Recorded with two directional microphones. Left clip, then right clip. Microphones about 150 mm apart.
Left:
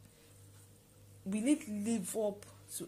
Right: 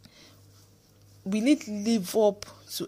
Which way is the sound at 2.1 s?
60° right (ahead or behind).